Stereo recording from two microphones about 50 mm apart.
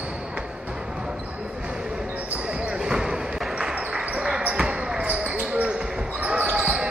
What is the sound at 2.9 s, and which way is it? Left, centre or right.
Basketball bounce, centre.